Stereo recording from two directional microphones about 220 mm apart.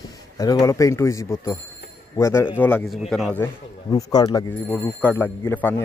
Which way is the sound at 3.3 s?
15° left (ahead or behind).